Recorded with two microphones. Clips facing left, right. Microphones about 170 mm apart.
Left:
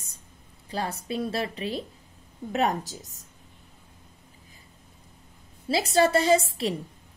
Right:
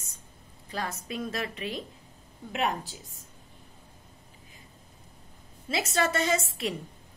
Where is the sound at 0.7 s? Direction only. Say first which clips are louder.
Left 4 dB; 30° left (ahead or behind).